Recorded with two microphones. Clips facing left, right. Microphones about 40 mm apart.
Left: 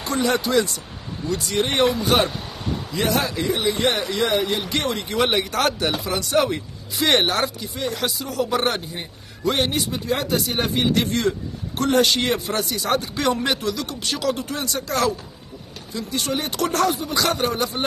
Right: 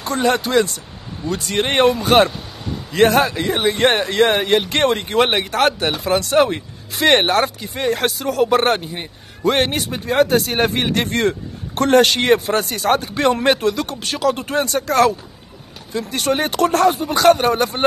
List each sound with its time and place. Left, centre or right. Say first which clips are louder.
0.0 s a man's voice: right 3 dB; right
3.2 s speech: right 5 dB; right
16.1 s speech: right 6 dB; right